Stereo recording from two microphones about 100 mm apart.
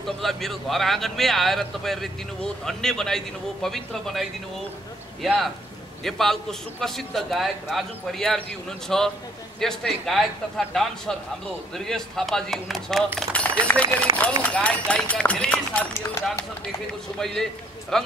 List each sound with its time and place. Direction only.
0.2 s a man's voice: centre (ahead or behind)
13.3 s a sound: 15° left (ahead or behind)
14.1 s speech: 35° right (ahead or behind)
14.6 s speech: 10° left (ahead or behind)
17.2 s a man's voice: 5° left (ahead or behind)